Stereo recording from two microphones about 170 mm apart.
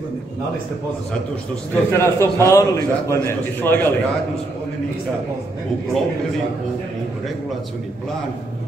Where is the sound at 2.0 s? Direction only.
15° left (ahead or behind).